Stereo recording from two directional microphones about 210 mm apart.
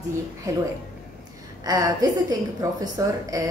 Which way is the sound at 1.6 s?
15° right (ahead or behind).